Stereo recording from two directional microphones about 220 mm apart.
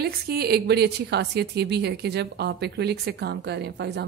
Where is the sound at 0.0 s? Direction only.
45° right (ahead or behind).